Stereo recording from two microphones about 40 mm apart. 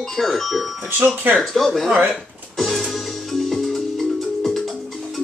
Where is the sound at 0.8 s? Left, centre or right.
Right.